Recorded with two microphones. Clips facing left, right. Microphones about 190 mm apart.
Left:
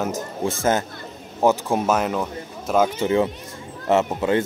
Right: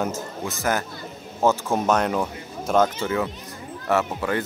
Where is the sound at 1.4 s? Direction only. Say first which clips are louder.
Left 2 dB; 15° left (ahead or behind).